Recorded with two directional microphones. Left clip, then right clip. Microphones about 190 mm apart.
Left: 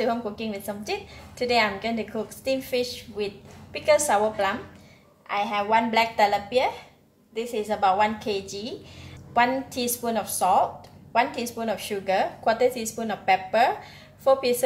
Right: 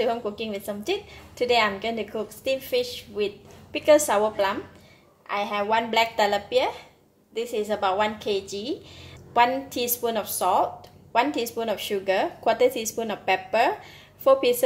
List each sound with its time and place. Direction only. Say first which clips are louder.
0.0 s a woman's voice: right 1 dB; 35° right (ahead or behind)